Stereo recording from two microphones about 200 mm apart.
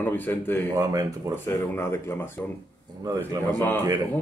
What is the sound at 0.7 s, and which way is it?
Speech, 15° right (ahead or behind).